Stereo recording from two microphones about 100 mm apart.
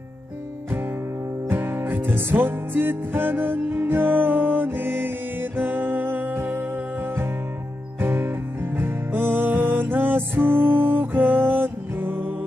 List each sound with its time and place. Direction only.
1.5 s music: 20° right (ahead or behind)
8.0 s music: 20° right (ahead or behind)